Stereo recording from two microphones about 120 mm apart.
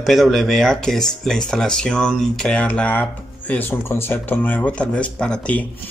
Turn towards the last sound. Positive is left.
turn(degrees=10)  # may be behind; listen again after turning